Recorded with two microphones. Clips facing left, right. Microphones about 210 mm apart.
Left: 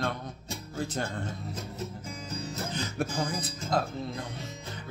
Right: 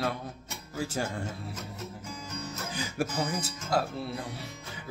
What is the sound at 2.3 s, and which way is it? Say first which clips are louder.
Music: left 3 dB; 30° left (ahead or behind).